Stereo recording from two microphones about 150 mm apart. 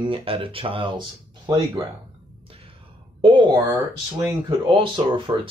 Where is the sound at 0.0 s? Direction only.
35° right (ahead or behind).